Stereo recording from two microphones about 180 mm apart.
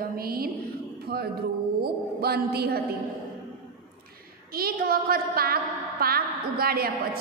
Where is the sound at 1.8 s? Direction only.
60° right (ahead or behind).